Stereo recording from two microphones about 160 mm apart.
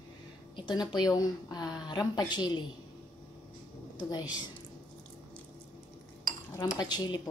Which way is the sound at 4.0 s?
25° left (ahead or behind).